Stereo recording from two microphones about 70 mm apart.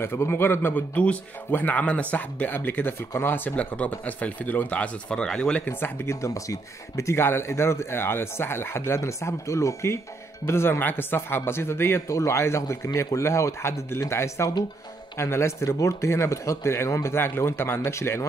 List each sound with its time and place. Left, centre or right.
0.0 s speech: left
0.9 s speech: centre
5.7 s speech: left
6.0 s speech: left